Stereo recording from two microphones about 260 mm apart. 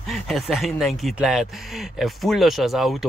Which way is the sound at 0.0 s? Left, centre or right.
Centre.